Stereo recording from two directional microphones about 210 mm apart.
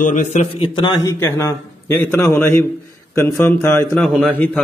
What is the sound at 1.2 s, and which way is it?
A man's voice, 15° left (ahead or behind).